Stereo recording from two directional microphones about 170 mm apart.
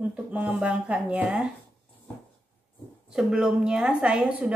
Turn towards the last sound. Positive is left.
turn(degrees=-5)  # may be behind; listen again after turning